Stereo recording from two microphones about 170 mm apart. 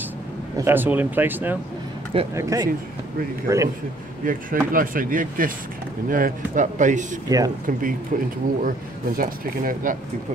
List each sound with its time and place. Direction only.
0.6 s speech: 15° right (ahead or behind)
4.2 s speech: 55° right (ahead or behind)
7.2 s speech: 20° right (ahead or behind)
8.1 s speech: 50° right (ahead or behind)